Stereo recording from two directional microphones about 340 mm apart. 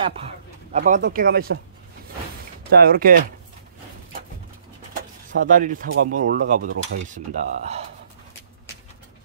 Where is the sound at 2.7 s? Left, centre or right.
Right.